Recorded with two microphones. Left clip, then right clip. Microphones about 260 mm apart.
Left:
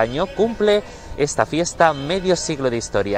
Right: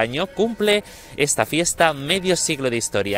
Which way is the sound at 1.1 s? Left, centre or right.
Right.